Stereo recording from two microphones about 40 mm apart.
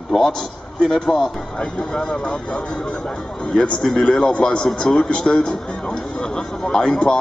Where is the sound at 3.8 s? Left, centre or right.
Centre.